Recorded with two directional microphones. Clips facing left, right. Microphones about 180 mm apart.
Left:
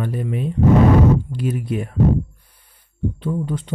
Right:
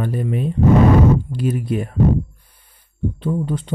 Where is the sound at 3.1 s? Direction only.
35° right (ahead or behind).